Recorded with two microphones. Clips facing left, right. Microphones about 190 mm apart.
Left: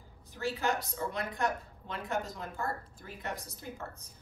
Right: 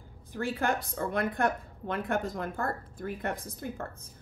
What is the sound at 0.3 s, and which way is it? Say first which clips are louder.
A woman's voice: right 3 dB; 55° right (ahead or behind).